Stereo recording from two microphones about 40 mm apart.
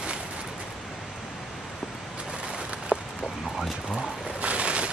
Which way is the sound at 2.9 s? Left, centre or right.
Right.